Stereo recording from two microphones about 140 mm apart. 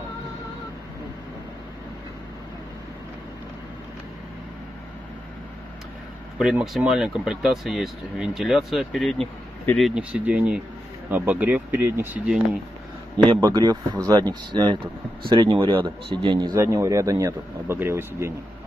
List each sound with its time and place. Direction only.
6.3 s speech: 5° right (ahead or behind)
13.2 s speech: 30° right (ahead or behind)
16.5 s speech: 20° right (ahead or behind)